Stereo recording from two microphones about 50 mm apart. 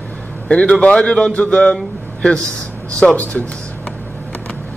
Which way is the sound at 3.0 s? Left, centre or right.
Centre.